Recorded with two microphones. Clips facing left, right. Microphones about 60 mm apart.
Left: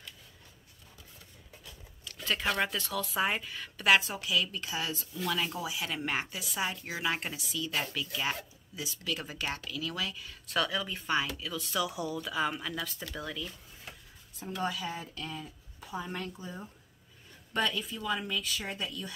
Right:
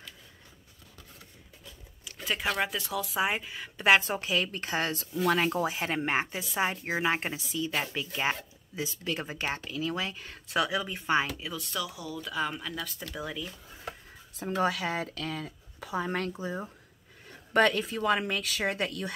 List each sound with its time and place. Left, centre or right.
2.2 s speech: centre
3.8 s speech: right
4.2 s speech: right
10.4 s speech: centre
11.5 s speech: centre
11.8 s speech: left
12.2 s speech: centre
13.2 s speech: centre
14.4 s speech: right
17.3 s speech: right